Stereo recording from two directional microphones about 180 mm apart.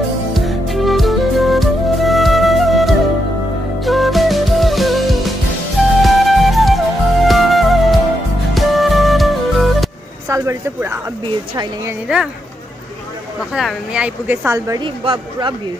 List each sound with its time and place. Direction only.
0.3 s music: centre (ahead or behind)
10.2 s a sound: 15° right (ahead or behind)
13.5 s speech: 5° right (ahead or behind)
14.8 s speech: 25° right (ahead or behind)